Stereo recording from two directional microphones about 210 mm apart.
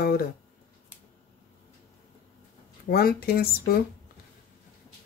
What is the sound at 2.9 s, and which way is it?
Speech, 45° left (ahead or behind).